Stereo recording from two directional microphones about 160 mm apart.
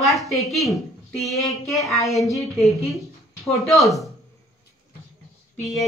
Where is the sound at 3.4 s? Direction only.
Centre (ahead or behind).